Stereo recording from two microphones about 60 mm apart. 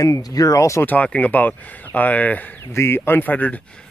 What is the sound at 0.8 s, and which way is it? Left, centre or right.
Speech, left.